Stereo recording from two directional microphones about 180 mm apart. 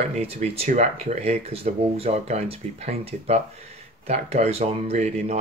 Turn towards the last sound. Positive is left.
turn(degrees=-35)  # may be behind; listen again after turning